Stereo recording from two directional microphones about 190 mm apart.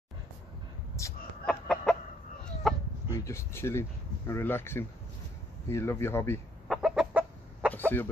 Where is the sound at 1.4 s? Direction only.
5° left (ahead or behind).